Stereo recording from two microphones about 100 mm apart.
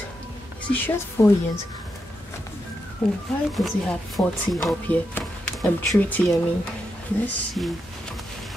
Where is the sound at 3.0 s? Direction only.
10° left (ahead or behind).